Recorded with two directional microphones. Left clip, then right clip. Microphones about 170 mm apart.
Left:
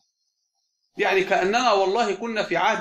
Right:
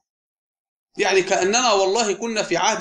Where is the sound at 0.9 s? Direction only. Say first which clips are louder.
Right 2 dB; 45° right (ahead or behind).